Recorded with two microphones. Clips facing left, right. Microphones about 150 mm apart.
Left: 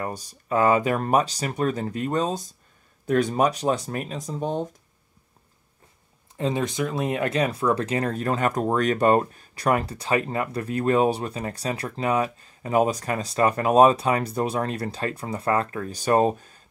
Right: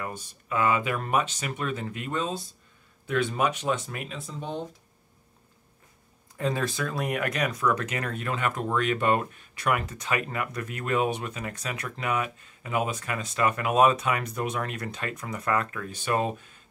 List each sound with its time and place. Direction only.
0.0 s speech: 40° left (ahead or behind)
6.3 s speech: 20° left (ahead or behind); by 16.6 s 40° left (ahead or behind)